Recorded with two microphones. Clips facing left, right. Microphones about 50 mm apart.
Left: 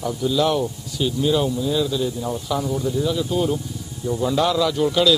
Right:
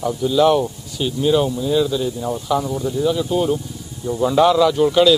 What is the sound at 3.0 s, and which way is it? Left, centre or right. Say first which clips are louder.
Speech: right 6 dB; centre.